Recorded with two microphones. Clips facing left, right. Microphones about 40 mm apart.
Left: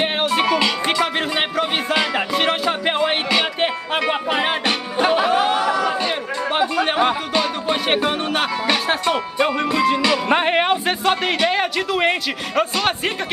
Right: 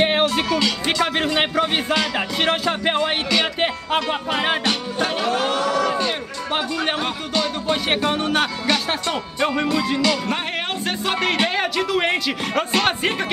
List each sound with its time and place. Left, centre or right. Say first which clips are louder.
0.2 s music: left 2 dB; centre
1.0 s a man's voice: right 1 dB; centre
2.0 s music: left 2 dB; centre
10.2 s speech: left 7 dB; left
10.7 s a man's voice: left 5 dB; centre